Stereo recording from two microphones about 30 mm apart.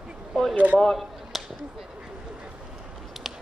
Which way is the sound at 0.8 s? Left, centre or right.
Centre.